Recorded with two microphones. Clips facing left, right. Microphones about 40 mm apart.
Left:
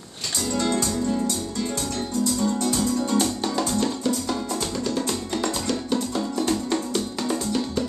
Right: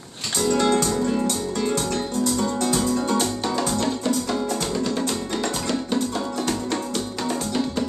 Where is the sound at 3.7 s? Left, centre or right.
Centre.